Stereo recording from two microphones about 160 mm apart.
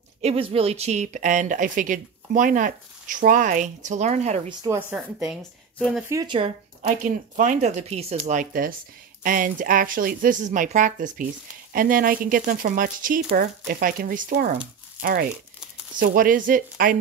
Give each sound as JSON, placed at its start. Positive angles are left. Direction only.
{"t": 0.2, "sound": "speech", "side_deg": -40}
{"t": 4.9, "sound": "a woman's voice", "side_deg": -5}
{"t": 6.2, "sound": "speech", "side_deg": -30}
{"t": 6.8, "sound": "speech", "side_deg": -55}